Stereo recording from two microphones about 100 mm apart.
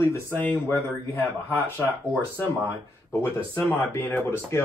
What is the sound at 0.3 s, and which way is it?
Speech, 15° left (ahead or behind).